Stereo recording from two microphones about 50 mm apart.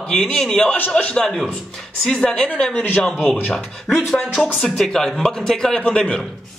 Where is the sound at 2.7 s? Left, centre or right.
Left.